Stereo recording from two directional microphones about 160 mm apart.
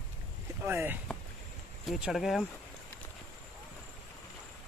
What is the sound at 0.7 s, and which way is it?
Speech, 15° right (ahead or behind).